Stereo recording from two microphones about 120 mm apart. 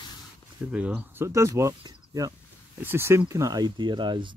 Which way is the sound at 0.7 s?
10° right (ahead or behind).